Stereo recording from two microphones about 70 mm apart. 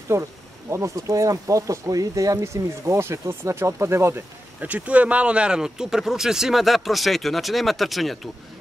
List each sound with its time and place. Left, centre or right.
0.1 s speech: right
2.3 s speech: right
4.6 s speech: right; by 8.3 s centre